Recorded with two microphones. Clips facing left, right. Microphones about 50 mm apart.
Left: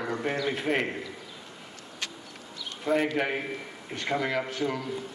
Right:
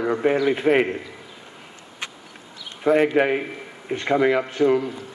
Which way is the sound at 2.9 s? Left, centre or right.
Right.